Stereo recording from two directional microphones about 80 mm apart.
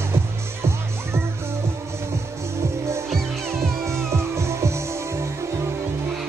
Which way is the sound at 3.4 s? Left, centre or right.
Right.